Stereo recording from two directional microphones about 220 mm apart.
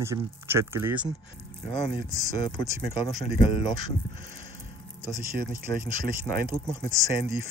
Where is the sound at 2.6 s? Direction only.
20° left (ahead or behind).